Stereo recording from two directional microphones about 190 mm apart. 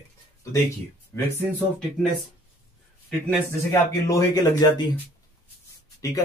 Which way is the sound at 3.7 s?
15° left (ahead or behind).